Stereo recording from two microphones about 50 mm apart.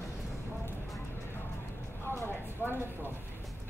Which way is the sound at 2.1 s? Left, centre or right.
Left.